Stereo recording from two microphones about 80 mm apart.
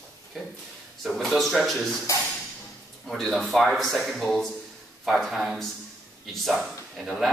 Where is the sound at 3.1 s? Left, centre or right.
Centre.